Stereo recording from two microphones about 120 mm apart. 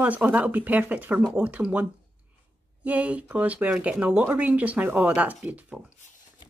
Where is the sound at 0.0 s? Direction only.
10° right (ahead or behind).